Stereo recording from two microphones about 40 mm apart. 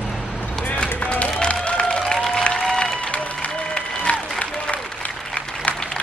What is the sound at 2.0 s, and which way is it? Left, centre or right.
Applause, centre.